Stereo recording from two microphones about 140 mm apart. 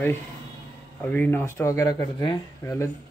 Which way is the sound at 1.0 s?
10° left (ahead or behind).